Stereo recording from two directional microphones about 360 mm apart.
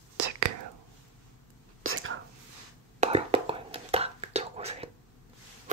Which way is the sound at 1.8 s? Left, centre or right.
Right.